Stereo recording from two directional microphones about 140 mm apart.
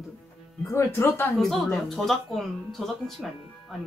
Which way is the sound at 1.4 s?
5° left (ahead or behind).